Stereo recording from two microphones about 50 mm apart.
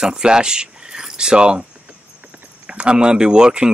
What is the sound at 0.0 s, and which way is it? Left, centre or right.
Speech, centre.